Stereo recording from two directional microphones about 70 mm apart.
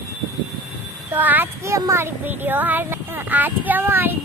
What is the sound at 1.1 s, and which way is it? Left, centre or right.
Speech, right.